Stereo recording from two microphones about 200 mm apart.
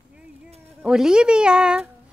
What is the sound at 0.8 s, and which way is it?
Speech, 5° right (ahead or behind).